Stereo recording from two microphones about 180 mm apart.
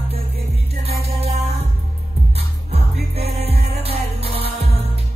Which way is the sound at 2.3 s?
35° right (ahead or behind).